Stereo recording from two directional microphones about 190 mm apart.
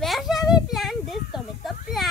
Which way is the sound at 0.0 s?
Centre (ahead or behind).